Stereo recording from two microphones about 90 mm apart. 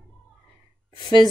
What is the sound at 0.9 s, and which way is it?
Speech, 55° left (ahead or behind).